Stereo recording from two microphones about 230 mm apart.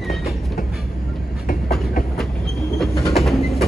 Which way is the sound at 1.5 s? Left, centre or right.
Left.